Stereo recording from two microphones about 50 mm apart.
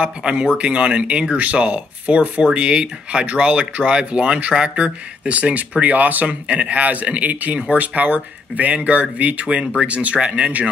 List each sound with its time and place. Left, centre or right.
0.0 s speech: centre